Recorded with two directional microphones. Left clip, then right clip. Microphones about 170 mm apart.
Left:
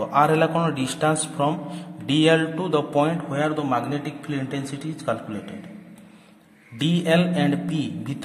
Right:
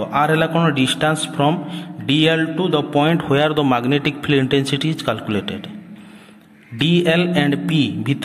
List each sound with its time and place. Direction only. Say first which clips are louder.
0.0 s a man's voice: right 2 dB; centre (ahead or behind)
3.3 s a man's voice: right 8 dB; 25° right (ahead or behind)
6.8 s speech: right 5 dB; 5° right (ahead or behind)